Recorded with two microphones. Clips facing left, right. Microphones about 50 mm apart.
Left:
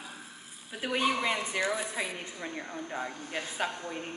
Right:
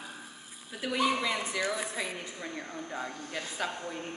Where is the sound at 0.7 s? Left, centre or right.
Left.